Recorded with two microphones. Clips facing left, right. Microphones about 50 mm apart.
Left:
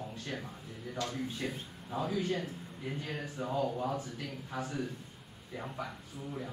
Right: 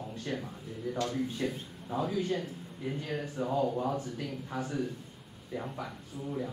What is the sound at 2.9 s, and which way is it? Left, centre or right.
Speech, centre.